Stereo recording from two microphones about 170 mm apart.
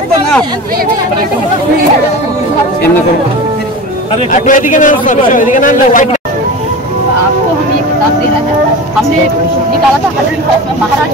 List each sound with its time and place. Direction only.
4.3 s a man's voice: 50° left (ahead or behind)